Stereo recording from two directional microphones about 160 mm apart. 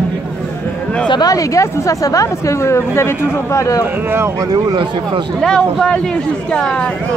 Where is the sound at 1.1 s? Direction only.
25° left (ahead or behind).